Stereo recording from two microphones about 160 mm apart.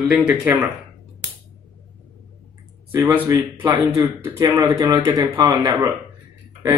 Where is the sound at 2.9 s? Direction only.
15° right (ahead or behind).